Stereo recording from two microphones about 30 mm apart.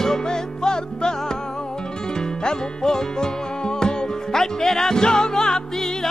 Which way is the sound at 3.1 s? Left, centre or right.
Left.